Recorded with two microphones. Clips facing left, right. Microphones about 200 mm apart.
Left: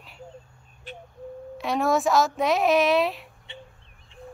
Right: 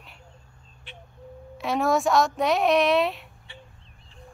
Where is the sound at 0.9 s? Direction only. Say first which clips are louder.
Left 7 dB; 40° left (ahead or behind).